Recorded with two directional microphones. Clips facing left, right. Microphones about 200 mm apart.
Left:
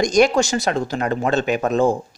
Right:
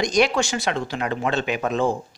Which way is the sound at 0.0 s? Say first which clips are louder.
Left 4 dB; 45° left (ahead or behind).